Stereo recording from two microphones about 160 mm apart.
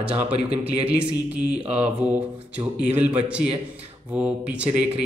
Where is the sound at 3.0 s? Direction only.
5° right (ahead or behind).